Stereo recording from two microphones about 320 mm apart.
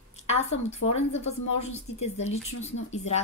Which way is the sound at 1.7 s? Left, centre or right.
Centre.